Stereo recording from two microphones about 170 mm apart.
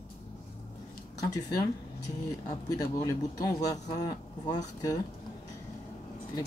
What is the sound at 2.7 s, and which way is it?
Speech, 20° left (ahead or behind).